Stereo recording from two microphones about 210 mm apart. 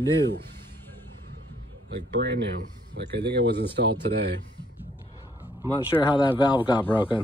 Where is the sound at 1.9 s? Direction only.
55° right (ahead or behind).